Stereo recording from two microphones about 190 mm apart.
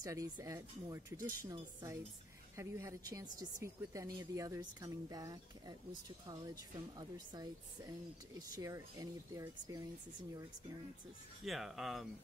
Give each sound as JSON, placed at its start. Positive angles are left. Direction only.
{"t": 0.0, "sound": "a woman's voice", "side_deg": -15}
{"t": 8.5, "sound": "speech", "side_deg": -15}
{"t": 11.4, "sound": "speech", "side_deg": 0}